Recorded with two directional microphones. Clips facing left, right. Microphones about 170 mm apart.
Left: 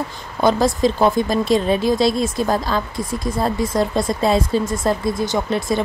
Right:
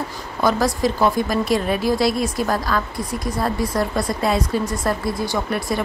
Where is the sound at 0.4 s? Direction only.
25° left (ahead or behind).